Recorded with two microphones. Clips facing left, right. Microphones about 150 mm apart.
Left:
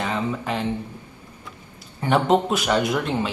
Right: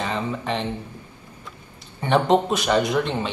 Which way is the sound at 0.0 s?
5° left (ahead or behind).